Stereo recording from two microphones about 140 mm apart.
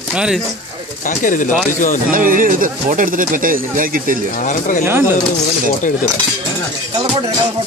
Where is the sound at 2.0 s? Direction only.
75° right (ahead or behind).